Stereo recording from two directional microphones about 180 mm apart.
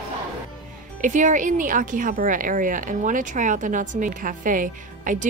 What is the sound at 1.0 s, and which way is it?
A woman's voice, 45° right (ahead or behind).